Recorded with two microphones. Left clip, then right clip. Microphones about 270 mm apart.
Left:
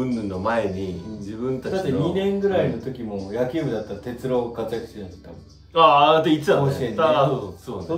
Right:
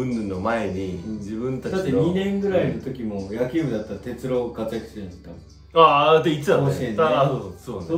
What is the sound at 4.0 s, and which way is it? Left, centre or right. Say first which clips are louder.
Speech: left 1 dB; centre.